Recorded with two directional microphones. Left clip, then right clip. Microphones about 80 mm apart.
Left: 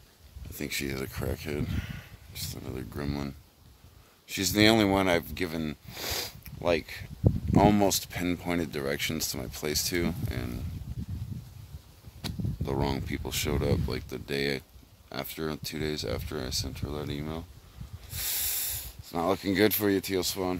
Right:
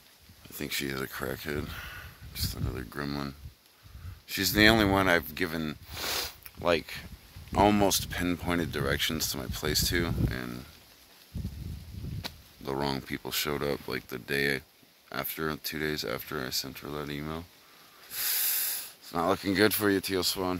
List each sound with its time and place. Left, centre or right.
0.6 s speech: left
1.6 s a sound: left
2.8 s speech: left
12.6 s speech: left
18.1 s a sound: left
19.5 s speech: left